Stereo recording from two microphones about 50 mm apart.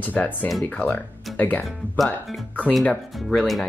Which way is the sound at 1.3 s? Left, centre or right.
Left.